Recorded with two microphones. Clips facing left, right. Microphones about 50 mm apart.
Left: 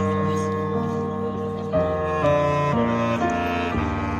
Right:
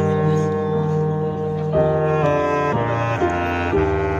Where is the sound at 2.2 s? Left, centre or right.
Right.